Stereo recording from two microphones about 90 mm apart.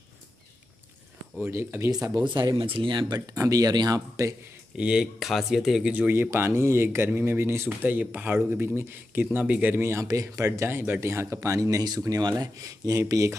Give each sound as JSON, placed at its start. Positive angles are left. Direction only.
{"t": 1.4, "sound": "speech", "side_deg": -25}
{"t": 2.2, "sound": "speech", "side_deg": -55}
{"t": 2.5, "sound": "speech", "side_deg": -80}
{"t": 3.2, "sound": "speech", "side_deg": -40}
{"t": 4.7, "sound": "speech", "side_deg": -10}
{"t": 5.9, "sound": "speech", "side_deg": -15}
{"t": 12.2, "sound": "speech", "side_deg": -55}
{"t": 12.5, "sound": "speech", "side_deg": -40}